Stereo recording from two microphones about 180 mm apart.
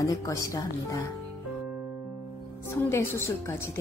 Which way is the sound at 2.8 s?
15° left (ahead or behind).